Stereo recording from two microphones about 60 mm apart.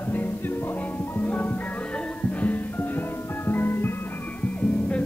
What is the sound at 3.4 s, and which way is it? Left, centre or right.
Music, left.